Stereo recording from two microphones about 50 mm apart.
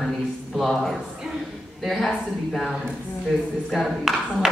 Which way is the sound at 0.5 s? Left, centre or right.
Centre.